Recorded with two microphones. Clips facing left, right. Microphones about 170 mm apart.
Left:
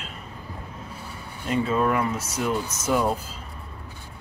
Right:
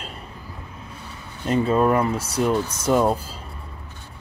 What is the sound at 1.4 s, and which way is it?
Speech, 35° right (ahead or behind).